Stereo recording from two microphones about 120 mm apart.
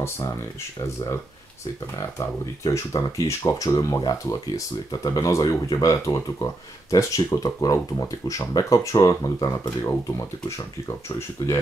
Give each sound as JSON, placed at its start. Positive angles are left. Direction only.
{"t": 2.0, "sound": "speech", "side_deg": 25}